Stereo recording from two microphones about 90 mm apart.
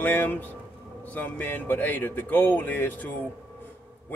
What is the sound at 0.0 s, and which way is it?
Speech, 20° left (ahead or behind).